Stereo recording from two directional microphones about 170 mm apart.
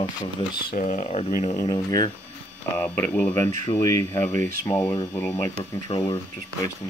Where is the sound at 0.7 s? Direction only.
50° left (ahead or behind).